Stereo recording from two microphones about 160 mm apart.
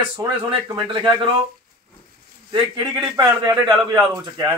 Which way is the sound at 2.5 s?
25° right (ahead or behind).